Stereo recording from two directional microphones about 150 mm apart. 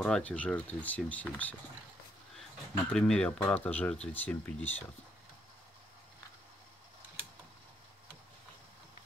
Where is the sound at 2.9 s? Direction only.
5° left (ahead or behind).